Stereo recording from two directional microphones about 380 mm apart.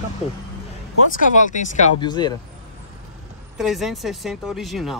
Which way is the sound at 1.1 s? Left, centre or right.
Left.